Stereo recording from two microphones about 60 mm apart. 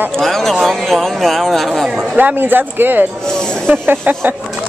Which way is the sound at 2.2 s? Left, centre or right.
Right.